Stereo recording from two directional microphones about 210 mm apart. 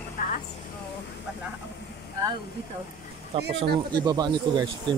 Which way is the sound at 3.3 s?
25° right (ahead or behind).